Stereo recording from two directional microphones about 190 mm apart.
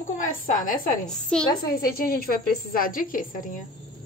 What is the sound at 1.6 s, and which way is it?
A woman's voice, 50° left (ahead or behind).